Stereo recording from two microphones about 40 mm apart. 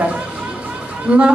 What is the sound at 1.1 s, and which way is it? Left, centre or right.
Speech, right.